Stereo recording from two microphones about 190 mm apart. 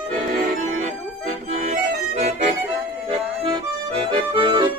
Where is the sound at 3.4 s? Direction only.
25° right (ahead or behind).